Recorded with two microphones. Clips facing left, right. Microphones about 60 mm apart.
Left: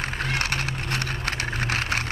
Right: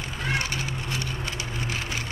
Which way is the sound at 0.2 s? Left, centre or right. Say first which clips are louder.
Right 1 dB; left.